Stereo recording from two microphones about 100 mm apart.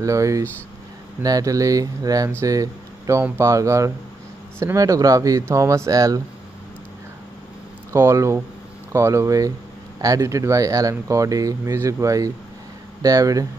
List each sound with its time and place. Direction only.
0.0 s speech: 30° right (ahead or behind)
7.9 s speech: 30° right (ahead or behind)